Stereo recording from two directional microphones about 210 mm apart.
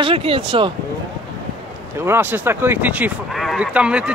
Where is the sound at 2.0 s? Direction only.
10° right (ahead or behind).